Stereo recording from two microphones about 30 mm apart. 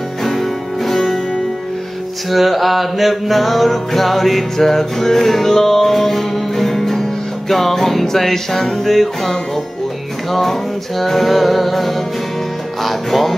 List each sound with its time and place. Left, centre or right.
0.2 s music: centre
2.3 s music: centre
11.0 s music: centre